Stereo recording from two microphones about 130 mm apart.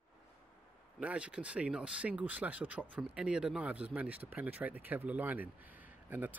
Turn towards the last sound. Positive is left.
turn(degrees=-15)  # may be behind; listen again after turning